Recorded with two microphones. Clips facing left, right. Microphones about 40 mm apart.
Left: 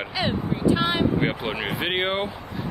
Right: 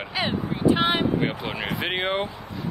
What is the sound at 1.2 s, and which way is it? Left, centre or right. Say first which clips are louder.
Speech: left 1 dB; left.